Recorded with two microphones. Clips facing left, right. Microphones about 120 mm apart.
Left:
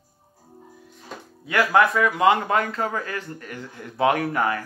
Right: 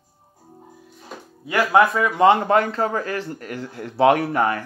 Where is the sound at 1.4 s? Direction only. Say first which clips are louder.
Right 2 dB; 25° right (ahead or behind).